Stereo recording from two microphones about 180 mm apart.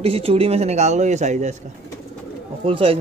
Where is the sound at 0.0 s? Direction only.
30° right (ahead or behind).